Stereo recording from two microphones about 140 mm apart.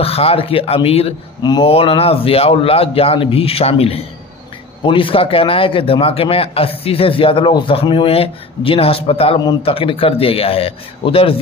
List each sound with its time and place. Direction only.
0.0 s a man's voice: 45° left (ahead or behind)
1.4 s speech: 30° left (ahead or behind)
1.7 s a man's voice: 45° left (ahead or behind)